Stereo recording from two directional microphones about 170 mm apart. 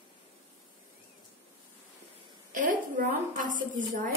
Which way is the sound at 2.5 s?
55° right (ahead or behind).